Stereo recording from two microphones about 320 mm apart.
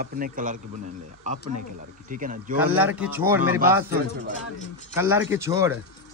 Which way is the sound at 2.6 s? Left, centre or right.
Centre.